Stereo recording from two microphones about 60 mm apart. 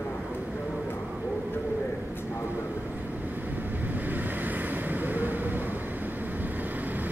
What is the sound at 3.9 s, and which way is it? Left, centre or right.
Vehicle, right.